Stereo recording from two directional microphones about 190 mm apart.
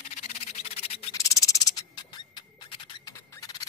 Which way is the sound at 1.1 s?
15° left (ahead or behind).